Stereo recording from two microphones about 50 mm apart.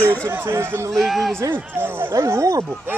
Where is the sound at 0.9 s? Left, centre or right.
Centre.